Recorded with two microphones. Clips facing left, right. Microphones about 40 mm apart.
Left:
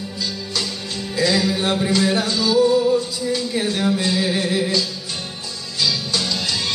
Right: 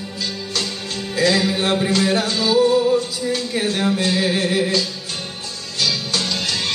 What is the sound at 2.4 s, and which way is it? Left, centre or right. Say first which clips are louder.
Music: even; right.